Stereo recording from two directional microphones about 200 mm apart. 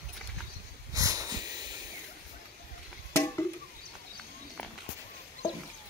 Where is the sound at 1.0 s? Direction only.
15° right (ahead or behind).